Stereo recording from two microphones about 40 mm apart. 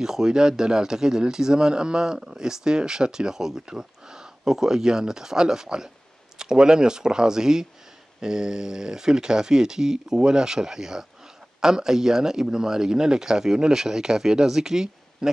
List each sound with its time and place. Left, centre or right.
0.0 s speech: centre